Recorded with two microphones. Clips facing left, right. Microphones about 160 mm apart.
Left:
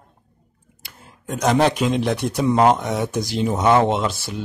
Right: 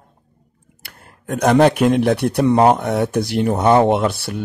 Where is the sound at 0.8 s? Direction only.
65° right (ahead or behind).